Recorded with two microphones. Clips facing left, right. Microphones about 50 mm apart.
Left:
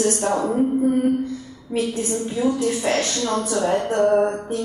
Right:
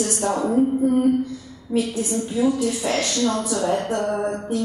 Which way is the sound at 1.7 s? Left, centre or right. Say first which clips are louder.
Even; left.